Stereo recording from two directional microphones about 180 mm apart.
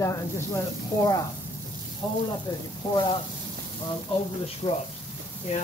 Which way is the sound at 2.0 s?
25° left (ahead or behind).